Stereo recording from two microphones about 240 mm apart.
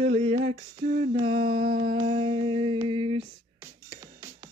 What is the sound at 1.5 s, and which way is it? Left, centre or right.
Music, right.